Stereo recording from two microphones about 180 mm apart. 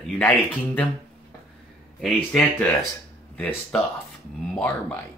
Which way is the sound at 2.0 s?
5° left (ahead or behind).